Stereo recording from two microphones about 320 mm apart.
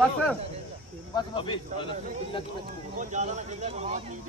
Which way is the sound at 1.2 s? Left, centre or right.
Centre.